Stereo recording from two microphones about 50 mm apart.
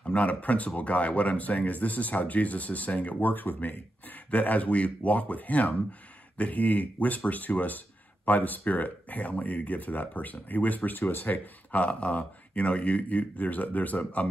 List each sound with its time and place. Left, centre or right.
0.0 s speech: left